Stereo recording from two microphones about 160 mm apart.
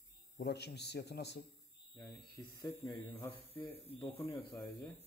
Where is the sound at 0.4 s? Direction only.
90° left.